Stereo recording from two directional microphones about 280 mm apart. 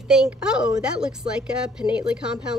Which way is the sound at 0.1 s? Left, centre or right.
Centre.